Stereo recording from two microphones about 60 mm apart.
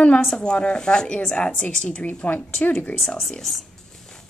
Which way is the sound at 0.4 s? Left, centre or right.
Centre.